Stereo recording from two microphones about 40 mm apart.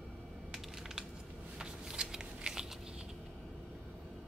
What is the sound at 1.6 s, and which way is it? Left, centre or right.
Shuffling cards, centre.